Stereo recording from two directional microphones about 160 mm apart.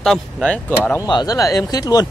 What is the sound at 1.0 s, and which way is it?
Speech, 25° left (ahead or behind).